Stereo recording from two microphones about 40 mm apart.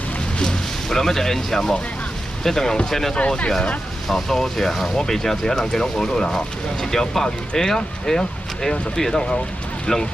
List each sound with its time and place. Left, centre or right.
0.4 s speech: centre
3.3 s speech: left
4.1 s speech: centre